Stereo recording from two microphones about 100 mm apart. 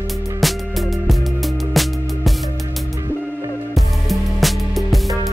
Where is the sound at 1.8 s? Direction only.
Centre (ahead or behind).